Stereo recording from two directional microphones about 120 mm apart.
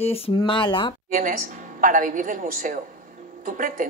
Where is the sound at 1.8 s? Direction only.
90° right.